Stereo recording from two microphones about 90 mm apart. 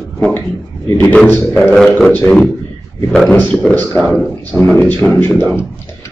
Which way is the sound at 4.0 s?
5° left (ahead or behind).